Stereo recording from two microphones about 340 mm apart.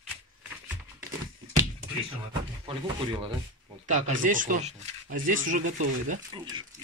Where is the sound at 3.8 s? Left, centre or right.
Right.